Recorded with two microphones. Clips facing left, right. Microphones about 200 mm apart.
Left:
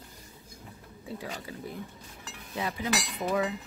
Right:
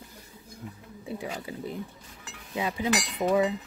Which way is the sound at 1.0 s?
20° right (ahead or behind).